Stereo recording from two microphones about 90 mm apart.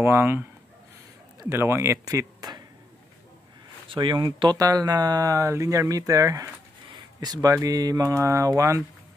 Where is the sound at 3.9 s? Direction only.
60° right (ahead or behind); by 6.5 s 40° right (ahead or behind).